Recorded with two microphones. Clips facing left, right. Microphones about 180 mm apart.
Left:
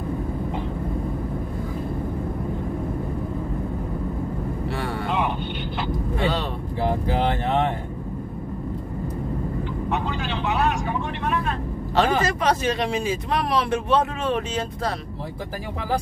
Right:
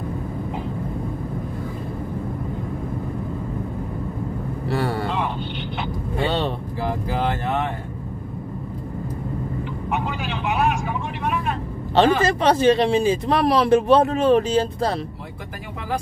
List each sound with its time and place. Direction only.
4.6 s vehicle: 40° right (ahead or behind)
6.2 s vehicle: 30° right (ahead or behind)
11.9 s a man's voice: 30° right (ahead or behind)